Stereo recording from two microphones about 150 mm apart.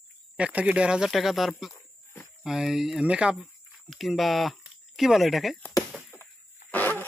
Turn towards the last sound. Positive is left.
turn(degrees=10)  # may be behind; listen again after turning